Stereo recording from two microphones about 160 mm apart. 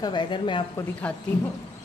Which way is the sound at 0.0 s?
30° left (ahead or behind).